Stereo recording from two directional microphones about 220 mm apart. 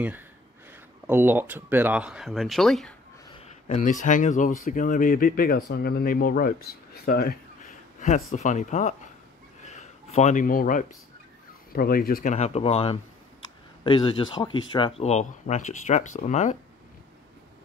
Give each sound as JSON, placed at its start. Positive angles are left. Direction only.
{"t": 0.7, "sound": "speech", "side_deg": -10}
{"t": 3.3, "sound": "speech", "side_deg": 25}
{"t": 8.3, "sound": "speech", "side_deg": 30}
{"t": 9.6, "sound": "a sound", "side_deg": 30}
{"t": 11.7, "sound": "speech", "side_deg": 40}